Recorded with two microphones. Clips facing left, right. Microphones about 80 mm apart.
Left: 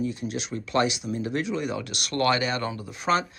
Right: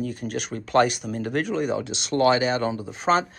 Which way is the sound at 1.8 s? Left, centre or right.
Right.